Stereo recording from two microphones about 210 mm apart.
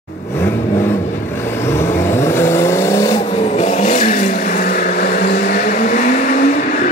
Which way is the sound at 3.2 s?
30° left (ahead or behind).